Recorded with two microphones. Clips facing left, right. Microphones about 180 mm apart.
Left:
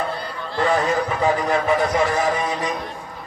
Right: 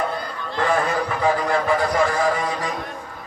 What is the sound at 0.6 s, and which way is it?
A man's voice, 20° left (ahead or behind).